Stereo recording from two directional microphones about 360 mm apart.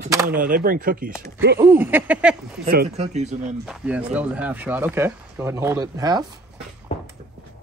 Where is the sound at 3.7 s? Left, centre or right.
Centre.